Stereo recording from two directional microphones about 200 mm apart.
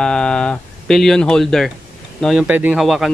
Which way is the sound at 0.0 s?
5° left (ahead or behind).